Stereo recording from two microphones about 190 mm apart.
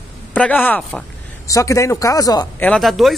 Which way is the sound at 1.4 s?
15° left (ahead or behind).